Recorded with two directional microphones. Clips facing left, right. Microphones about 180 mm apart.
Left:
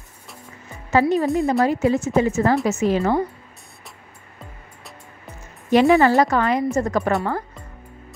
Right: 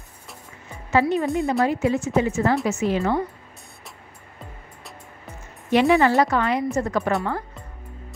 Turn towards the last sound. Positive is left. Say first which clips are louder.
# left 2 dB
turn(degrees=45)  # may be behind; listen again after turning